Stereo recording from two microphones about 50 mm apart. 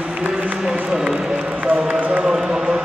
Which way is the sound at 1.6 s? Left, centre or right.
Right.